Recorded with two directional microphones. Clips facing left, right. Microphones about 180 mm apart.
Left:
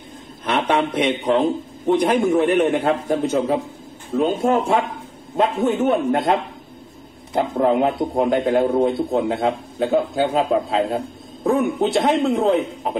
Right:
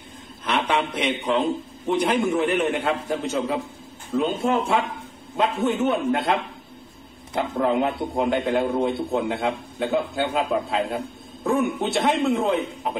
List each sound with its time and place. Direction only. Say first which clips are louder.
0.7 s a man's voice: left 7 dB; 35° left (ahead or behind)
7.3 s a man's voice: left 4 dB; 40° left (ahead or behind)